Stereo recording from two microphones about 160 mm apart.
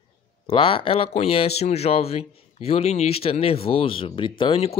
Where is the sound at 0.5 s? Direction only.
35° left (ahead or behind).